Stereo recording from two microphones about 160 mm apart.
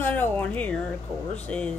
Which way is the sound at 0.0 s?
10° left (ahead or behind).